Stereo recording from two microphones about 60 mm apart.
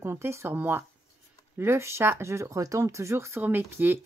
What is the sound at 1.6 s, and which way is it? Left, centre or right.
Speech, right.